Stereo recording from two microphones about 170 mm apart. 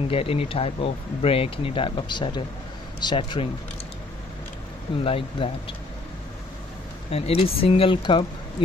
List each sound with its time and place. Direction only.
0.1 s speech: 35° left (ahead or behind)
5.0 s speech: 30° left (ahead or behind)
7.1 s speech: 35° left (ahead or behind)